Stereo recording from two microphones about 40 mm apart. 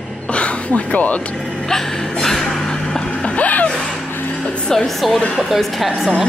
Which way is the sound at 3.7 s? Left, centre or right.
Centre.